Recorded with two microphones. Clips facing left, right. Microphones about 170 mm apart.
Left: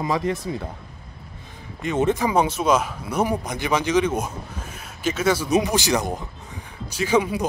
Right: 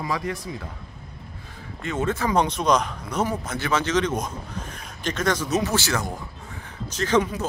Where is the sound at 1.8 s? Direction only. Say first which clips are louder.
Left 4 dB; 20° left (ahead or behind).